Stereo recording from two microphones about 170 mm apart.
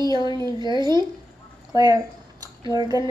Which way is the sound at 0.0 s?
25° right (ahead or behind).